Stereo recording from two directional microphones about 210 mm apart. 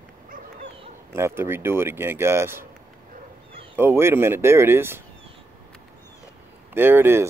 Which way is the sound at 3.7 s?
10° right (ahead or behind).